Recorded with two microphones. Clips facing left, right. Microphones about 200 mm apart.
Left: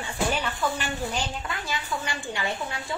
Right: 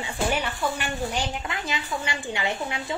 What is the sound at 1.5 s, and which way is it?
A woman's voice, 20° right (ahead or behind).